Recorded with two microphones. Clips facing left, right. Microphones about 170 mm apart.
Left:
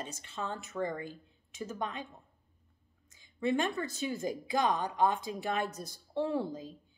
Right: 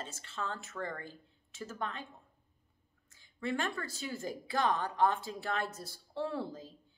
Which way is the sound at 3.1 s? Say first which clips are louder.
Left 5 dB; 15° left (ahead or behind).